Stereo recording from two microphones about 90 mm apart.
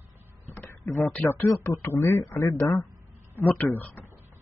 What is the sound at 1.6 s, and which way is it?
A man's voice, 30° left (ahead or behind).